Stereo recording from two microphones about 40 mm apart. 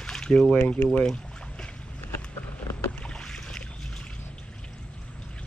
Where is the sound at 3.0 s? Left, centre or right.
Left.